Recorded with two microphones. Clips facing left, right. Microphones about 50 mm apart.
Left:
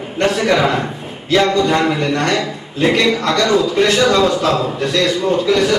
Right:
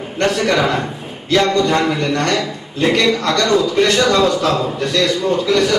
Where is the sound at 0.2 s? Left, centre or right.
Centre.